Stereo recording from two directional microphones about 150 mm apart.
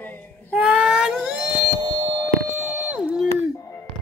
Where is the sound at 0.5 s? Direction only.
5° right (ahead or behind).